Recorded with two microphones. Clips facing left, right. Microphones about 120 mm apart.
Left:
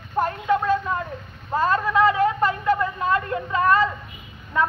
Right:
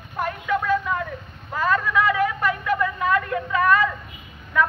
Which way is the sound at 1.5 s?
30° left (ahead or behind).